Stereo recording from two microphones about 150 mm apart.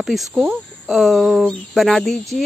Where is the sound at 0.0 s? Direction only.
Centre (ahead or behind).